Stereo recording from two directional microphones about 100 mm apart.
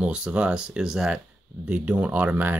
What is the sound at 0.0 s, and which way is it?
Speech, 10° right (ahead or behind).